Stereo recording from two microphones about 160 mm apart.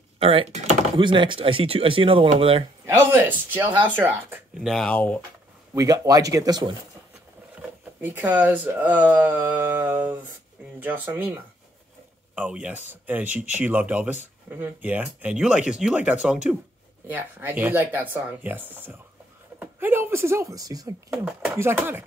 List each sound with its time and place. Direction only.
0.2 s speech: 35° right (ahead or behind)
2.9 s speech: 15° right (ahead or behind)
4.6 s speech: 5° left (ahead or behind)
5.8 s speech: 20° right (ahead or behind)
8.0 s speech: 10° right (ahead or behind)
12.4 s speech: 10° right (ahead or behind)
21.1 s speech: 10° right (ahead or behind)